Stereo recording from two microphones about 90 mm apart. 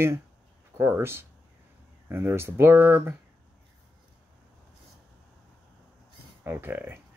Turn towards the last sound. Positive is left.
turn(degrees=-20)  # may be behind; listen again after turning